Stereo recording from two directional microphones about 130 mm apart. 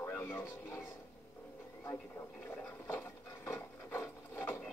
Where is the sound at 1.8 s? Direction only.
15° left (ahead or behind).